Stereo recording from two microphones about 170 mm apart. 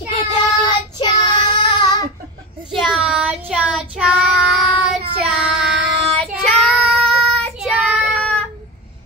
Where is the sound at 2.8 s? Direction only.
5° right (ahead or behind).